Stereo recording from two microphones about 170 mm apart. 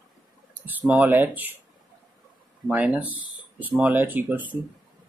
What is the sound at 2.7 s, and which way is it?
Speech, 10° right (ahead or behind).